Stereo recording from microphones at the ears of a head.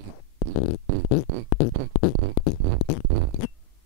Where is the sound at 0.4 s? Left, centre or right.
Left.